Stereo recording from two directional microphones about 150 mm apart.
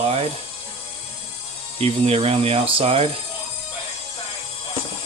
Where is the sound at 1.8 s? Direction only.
45° right (ahead or behind).